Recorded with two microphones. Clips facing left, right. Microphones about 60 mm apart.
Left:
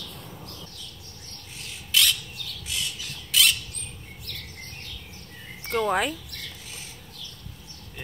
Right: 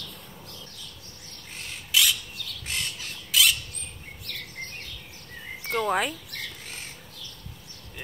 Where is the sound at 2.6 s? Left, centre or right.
Right.